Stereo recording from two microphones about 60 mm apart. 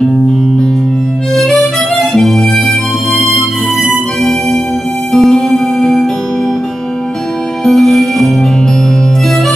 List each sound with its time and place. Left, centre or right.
1.3 s harmonica: centre
5.1 s music: centre
7.6 s music: centre